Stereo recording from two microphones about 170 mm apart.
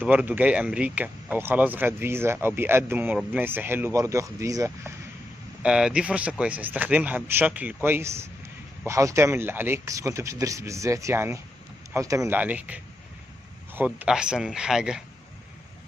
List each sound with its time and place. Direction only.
0.0 s speech: 10° right (ahead or behind)
5.6 s speech: 5° right (ahead or behind)